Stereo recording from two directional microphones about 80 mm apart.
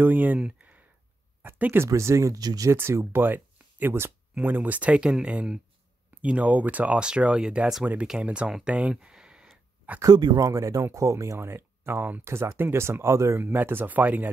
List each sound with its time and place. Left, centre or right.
0.0 s speech: right
0.4 s a sound: centre
1.6 s speech: right
1.9 s speech: right
2.7 s speech: right; by 9.5 s centre
10.0 s speech: right